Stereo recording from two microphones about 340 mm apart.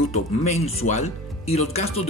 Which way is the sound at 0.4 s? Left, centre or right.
Centre.